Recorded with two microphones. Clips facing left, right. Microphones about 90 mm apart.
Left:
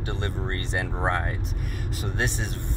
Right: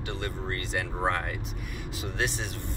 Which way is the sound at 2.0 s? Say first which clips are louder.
Left 2 dB; 45° left (ahead or behind).